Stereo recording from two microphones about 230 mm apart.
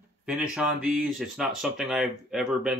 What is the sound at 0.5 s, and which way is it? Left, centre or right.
Speech, centre.